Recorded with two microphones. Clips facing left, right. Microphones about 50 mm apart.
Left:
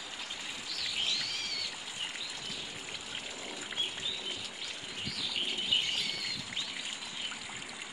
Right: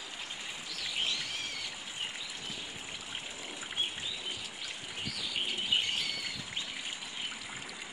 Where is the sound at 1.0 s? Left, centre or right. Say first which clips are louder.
Right 1 dB; right.